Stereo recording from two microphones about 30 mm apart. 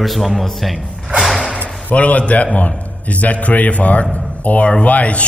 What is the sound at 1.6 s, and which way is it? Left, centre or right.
A man's voice, left.